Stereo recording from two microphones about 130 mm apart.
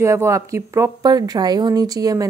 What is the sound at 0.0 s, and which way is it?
A woman's voice, 20° right (ahead or behind).